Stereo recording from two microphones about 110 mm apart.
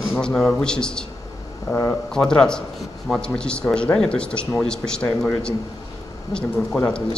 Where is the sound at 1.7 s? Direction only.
25° left (ahead or behind).